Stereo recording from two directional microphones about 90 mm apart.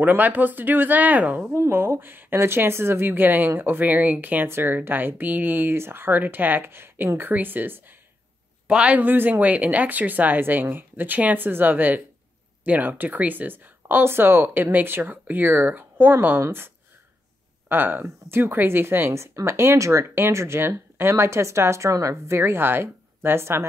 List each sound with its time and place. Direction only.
0.0 s speech: 20° right (ahead or behind)
1.5 s speech: 30° right (ahead or behind)